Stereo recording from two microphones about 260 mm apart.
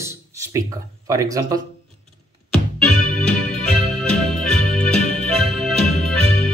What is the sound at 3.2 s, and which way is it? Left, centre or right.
Music, centre.